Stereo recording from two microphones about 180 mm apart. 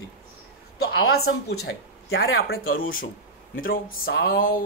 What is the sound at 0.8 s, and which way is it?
Speech, 60° left (ahead or behind).